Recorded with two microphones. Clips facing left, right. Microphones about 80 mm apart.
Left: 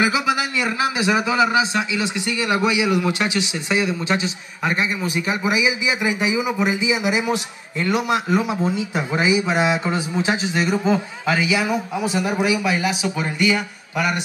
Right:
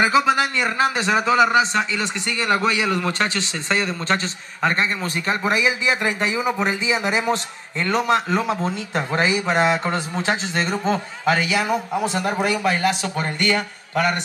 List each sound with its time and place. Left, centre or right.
0.0 s a man's voice: centre
12.6 s speech: right
13.5 s speech: centre